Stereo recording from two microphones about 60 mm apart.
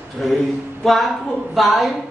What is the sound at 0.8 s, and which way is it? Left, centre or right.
Speech, centre.